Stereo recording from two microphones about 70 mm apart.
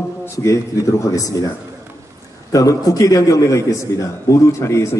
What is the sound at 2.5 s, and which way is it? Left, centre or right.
A man's voice, left.